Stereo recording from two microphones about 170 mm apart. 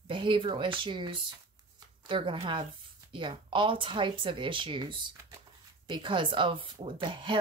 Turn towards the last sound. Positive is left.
turn(degrees=-30)  # may be behind; listen again after turning